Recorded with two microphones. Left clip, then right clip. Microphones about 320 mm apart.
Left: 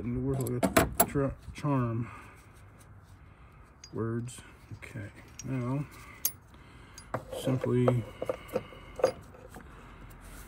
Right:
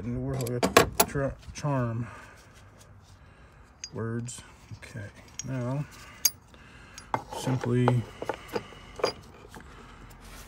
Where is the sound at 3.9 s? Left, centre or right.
Right.